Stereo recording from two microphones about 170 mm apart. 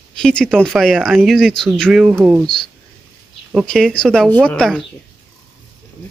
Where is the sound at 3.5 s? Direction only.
5° left (ahead or behind).